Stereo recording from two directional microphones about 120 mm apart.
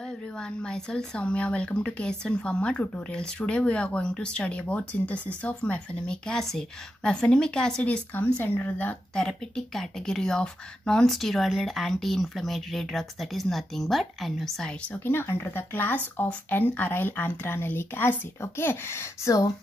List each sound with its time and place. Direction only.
0.0 s speech: 5° left (ahead or behind); by 19.5 s 25° left (ahead or behind)